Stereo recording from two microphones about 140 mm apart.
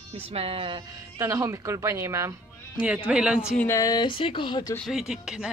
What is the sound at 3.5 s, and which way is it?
Speech, 20° left (ahead or behind).